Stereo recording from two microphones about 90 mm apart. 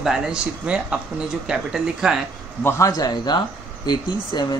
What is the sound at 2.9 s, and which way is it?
Speech, 50° left (ahead or behind).